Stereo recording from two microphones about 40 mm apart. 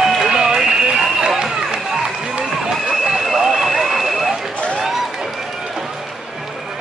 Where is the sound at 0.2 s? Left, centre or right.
Centre.